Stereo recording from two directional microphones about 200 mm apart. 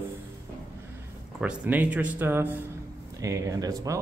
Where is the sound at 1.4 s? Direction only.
5° right (ahead or behind).